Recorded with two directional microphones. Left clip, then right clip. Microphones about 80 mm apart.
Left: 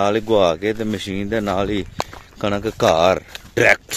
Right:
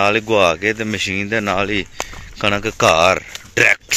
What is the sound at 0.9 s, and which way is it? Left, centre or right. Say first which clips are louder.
Speech: right 4 dB; left.